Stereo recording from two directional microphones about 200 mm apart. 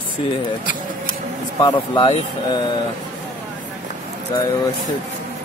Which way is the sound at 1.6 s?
20° left (ahead or behind).